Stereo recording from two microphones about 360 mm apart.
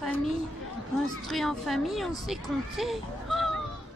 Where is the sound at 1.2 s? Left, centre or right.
Centre.